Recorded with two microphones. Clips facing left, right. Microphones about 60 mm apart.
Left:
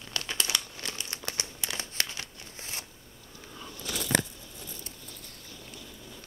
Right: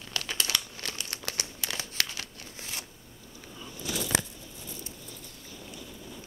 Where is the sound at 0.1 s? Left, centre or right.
Left.